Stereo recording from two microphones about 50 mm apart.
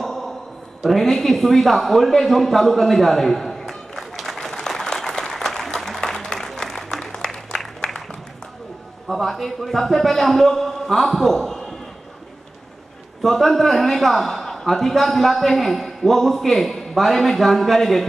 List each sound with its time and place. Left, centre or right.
0.0 s a sound: centre
9.0 s a man's voice: centre
13.2 s a man's voice: centre